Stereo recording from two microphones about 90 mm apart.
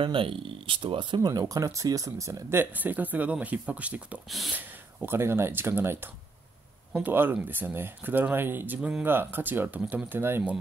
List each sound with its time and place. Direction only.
0.0 s speech: 75° right (ahead or behind)
1.2 s speech: 45° right (ahead or behind)
2.6 s speech: 20° right (ahead or behind)